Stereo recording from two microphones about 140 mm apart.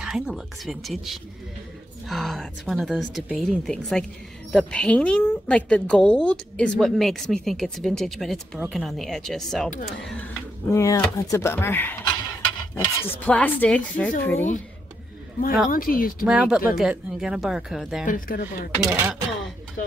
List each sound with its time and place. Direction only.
0.0 s speech: centre (ahead or behind)
10.7 s speech: 25° left (ahead or behind)
15.7 s speech: 90° left
16.3 s speech: 5° right (ahead or behind)
18.0 s speech: 85° left
18.8 s speech: 25° right (ahead or behind)